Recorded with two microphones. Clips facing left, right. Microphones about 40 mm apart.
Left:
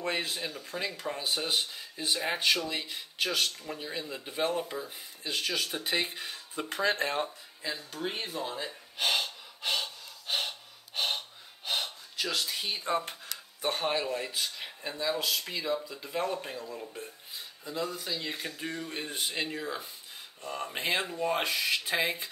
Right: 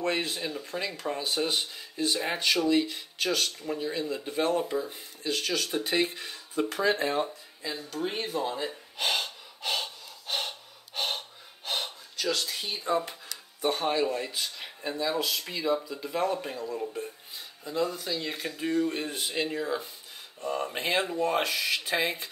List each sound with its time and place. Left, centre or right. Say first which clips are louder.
0.0 s speech: right 3 dB; centre
6.8 s speech: right 1 dB; left
7.9 s speech: right 7 dB; centre
9.0 s gasp: even; centre
12.3 s speech: right 3 dB; centre
12.8 s speech: right 4 dB; left
13.6 s speech: right 4 dB; centre